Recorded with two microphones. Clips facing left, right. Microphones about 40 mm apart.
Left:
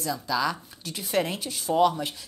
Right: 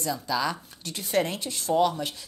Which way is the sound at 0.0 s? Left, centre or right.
Centre.